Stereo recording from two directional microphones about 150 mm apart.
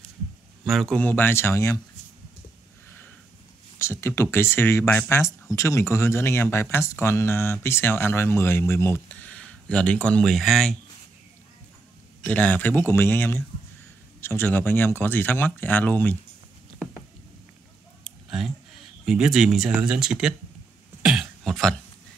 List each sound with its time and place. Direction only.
0.7 s speech: 5° left (ahead or behind); by 1.8 s 20° left (ahead or behind)
3.7 s speech: 15° left (ahead or behind); by 10.8 s centre (ahead or behind)
12.2 s speech: 10° left (ahead or behind)
19.0 s speech: 5° right (ahead or behind)
21.0 s throat clearing: 5° right (ahead or behind)